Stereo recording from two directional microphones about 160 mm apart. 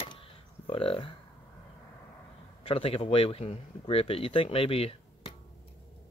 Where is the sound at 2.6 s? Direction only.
35° left (ahead or behind).